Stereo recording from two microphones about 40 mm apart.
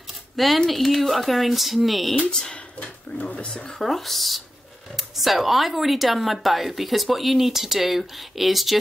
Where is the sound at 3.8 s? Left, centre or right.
Centre.